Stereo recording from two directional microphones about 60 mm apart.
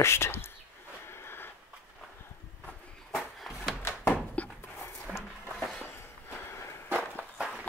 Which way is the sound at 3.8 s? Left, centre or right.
Left.